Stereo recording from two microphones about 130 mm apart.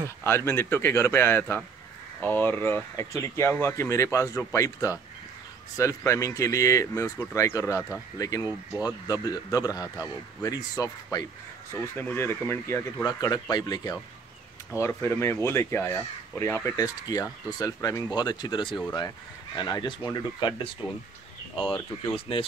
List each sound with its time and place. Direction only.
0.2 s speech: 20° left (ahead or behind)
13.0 s speech: 30° left (ahead or behind)
14.8 s speech: 15° left (ahead or behind); by 22.5 s 45° left (ahead or behind)